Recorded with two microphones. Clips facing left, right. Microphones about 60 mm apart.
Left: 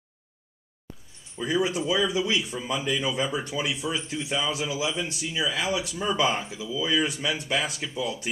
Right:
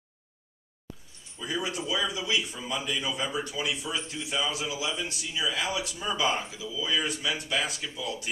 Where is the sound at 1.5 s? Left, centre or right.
Centre.